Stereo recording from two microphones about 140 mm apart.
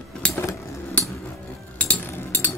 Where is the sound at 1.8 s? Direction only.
10° left (ahead or behind).